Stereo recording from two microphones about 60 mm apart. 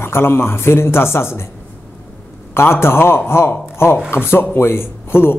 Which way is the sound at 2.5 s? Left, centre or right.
Left.